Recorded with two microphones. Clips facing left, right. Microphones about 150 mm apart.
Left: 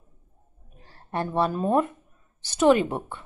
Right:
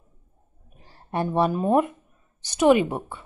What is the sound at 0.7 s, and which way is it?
A woman's voice, 15° right (ahead or behind).